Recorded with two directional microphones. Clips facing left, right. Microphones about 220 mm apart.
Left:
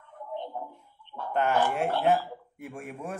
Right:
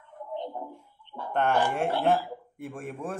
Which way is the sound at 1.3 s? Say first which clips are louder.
Even; 5° left (ahead or behind).